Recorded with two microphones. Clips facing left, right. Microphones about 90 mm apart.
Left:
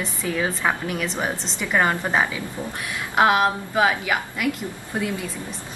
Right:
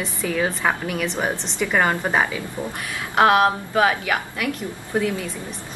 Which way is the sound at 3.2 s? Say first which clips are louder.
Right 2 dB; 5° left (ahead or behind).